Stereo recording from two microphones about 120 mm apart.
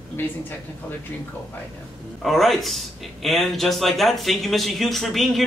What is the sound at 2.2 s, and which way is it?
Speech, centre (ahead or behind).